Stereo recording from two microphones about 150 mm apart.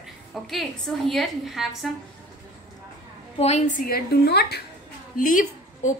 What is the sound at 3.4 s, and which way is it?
Speech, 45° left (ahead or behind).